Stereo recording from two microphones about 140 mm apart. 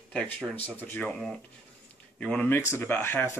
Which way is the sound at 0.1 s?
5° left (ahead or behind).